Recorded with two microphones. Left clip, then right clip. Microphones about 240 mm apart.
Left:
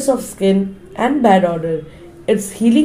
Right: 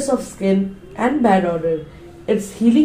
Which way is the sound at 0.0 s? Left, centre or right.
Left.